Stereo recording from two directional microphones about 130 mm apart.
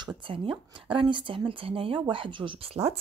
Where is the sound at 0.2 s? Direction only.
40° right (ahead or behind).